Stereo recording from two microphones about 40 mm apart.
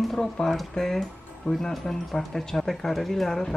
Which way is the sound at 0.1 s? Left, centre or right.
Centre.